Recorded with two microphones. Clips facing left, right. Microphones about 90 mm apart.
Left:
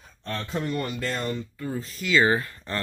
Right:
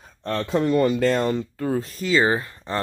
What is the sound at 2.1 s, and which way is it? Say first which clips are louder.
Speech: right 1 dB; 25° right (ahead or behind).